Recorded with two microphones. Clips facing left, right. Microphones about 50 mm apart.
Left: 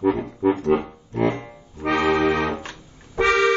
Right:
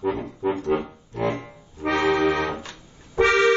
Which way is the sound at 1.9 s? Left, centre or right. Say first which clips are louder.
Left 1 dB; centre.